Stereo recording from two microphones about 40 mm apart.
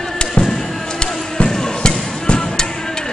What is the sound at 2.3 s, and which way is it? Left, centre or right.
Music, left.